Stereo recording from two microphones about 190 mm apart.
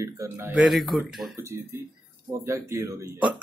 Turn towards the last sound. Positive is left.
turn(degrees=-10)  # may be behind; listen again after turning